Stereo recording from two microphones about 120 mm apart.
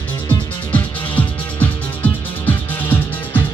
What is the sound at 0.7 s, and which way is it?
Music, 15° left (ahead or behind).